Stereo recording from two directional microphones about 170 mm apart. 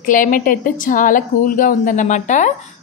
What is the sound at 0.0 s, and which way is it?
A woman's voice, 50° left (ahead or behind).